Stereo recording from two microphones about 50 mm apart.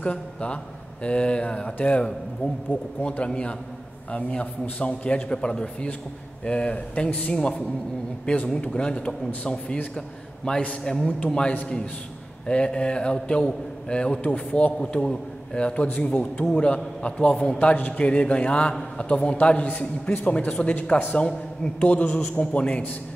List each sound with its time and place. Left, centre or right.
0.0 s a man's voice: left
3.1 s a man's voice: left
17.7 s a man's voice: left
18.0 s a man's voice: left
21.8 s a man's voice: left
22.4 s a man's voice: left